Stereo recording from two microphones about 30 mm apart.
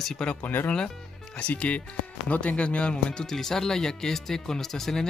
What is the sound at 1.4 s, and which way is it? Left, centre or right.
Speech, left.